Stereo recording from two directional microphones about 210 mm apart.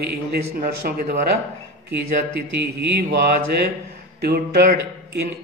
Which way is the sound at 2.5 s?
50° right (ahead or behind).